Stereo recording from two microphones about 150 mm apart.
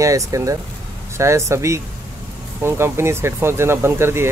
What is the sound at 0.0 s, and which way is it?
Speech, 20° right (ahead or behind).